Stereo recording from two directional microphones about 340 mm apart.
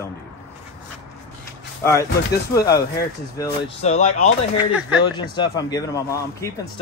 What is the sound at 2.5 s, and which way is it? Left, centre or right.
Speech, centre.